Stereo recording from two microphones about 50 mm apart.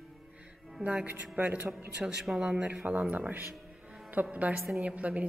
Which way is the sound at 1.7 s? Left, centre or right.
Centre.